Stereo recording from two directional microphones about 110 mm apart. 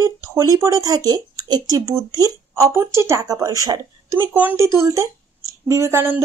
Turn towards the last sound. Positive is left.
turn(degrees=-25)  # may be behind; listen again after turning